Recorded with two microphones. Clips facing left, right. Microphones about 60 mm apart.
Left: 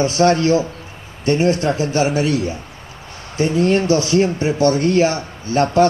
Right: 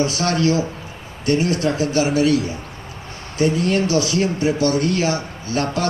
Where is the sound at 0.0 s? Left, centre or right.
Left.